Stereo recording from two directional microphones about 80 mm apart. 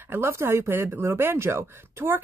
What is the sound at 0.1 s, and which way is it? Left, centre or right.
Speech, right.